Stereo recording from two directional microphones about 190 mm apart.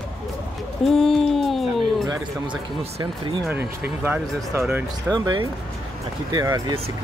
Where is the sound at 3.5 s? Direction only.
10° right (ahead or behind).